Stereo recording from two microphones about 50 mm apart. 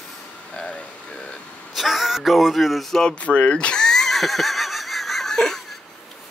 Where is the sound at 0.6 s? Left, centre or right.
Left.